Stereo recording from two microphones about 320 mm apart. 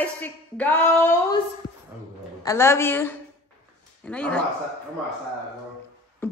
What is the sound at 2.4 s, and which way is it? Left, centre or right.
A woman's voice, centre.